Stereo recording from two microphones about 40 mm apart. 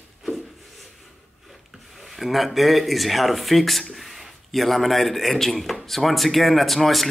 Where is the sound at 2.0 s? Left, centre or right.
Centre.